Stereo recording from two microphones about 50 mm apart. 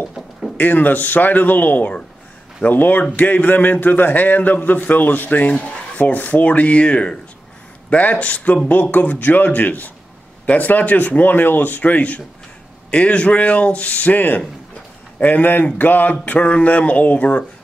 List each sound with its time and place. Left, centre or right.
0.6 s a man's voice: left